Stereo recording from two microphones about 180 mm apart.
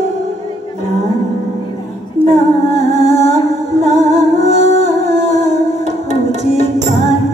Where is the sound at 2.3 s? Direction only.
40° right (ahead or behind).